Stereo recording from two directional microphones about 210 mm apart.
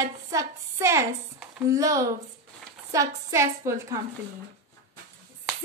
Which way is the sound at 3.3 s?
15° right (ahead or behind).